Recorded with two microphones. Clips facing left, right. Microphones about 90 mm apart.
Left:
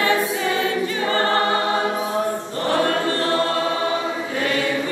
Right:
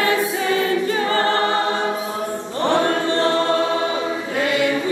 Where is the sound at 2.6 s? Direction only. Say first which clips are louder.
Right 2 dB; 20° right (ahead or behind).